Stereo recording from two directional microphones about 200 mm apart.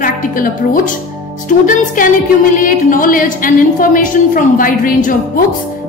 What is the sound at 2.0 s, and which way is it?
A woman's voice, 40° left (ahead or behind).